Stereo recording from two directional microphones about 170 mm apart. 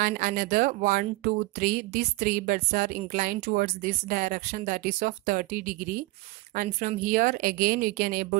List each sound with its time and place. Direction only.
0.0 s speech: 55° right (ahead or behind)